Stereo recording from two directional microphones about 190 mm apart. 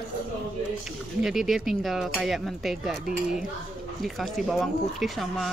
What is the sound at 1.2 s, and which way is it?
Speech, centre (ahead or behind).